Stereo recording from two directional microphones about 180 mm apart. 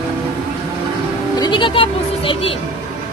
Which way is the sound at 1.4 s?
25° left (ahead or behind).